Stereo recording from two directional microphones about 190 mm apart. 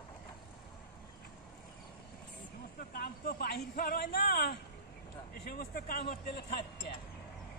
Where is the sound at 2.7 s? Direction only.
55° left (ahead or behind).